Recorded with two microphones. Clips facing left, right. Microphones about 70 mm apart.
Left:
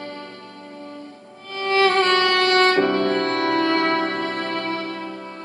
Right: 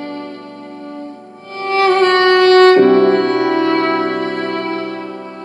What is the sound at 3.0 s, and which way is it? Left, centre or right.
Music, right.